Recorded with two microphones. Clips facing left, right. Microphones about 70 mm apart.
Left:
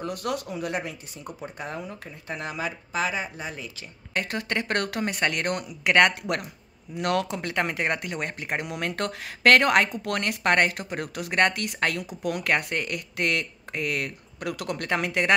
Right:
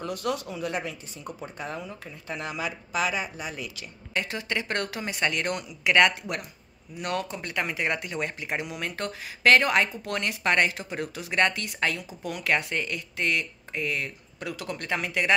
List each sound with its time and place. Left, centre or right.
0.0 s speech: left
4.1 s speech: left
7.0 s speech: left
7.5 s speech: left